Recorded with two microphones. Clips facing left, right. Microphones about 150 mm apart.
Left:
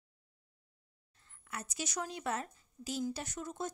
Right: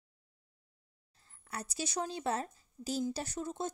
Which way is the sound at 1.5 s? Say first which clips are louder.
Right 3 dB; 35° right (ahead or behind).